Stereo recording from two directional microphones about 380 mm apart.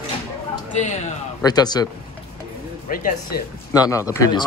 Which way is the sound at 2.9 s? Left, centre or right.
Left.